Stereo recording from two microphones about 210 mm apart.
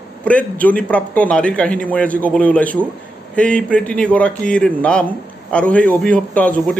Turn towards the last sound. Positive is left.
turn(degrees=5)  # may be behind; listen again after turning